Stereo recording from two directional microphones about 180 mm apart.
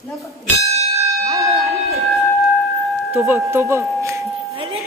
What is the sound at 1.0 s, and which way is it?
Church bell, 15° right (ahead or behind).